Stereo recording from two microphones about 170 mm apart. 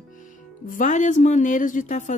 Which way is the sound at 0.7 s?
50° left (ahead or behind).